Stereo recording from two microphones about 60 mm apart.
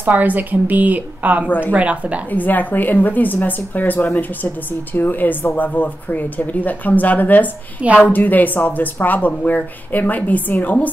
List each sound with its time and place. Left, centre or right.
0.0 s a woman's voice: right
2.3 s a woman's voice: left